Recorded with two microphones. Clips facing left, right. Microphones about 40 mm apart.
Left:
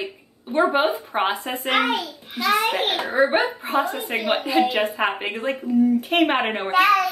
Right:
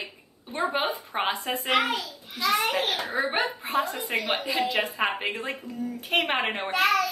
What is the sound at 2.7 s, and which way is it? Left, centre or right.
Speech, left.